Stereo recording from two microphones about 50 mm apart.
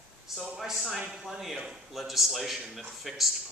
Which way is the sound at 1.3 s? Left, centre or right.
Centre.